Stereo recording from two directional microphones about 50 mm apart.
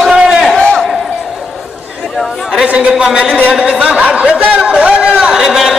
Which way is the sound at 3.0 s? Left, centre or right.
Centre.